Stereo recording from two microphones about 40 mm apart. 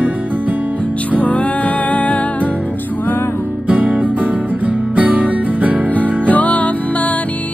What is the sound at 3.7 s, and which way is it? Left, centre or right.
Music, right.